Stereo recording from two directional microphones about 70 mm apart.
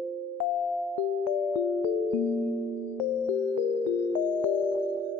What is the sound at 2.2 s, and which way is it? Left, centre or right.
Music, left.